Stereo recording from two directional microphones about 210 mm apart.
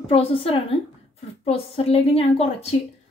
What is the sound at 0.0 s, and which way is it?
Speech, 25° left (ahead or behind).